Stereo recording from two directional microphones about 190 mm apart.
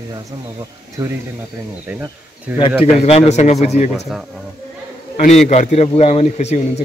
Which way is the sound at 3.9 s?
Centre (ahead or behind).